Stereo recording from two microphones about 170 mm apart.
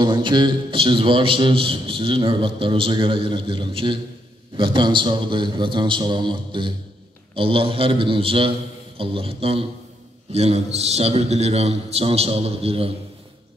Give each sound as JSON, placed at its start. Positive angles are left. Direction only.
{"t": 0.0, "sound": "a man's voice", "side_deg": -25}